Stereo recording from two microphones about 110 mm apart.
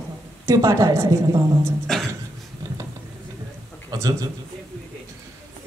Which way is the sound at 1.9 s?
5° left (ahead or behind).